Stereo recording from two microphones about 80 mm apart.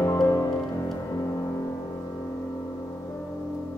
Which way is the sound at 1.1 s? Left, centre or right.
Left.